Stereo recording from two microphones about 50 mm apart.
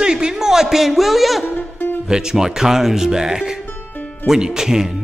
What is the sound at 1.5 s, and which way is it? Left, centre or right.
Music, left.